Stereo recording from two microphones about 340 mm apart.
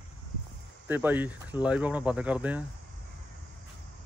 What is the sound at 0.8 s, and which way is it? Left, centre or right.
Speech, centre.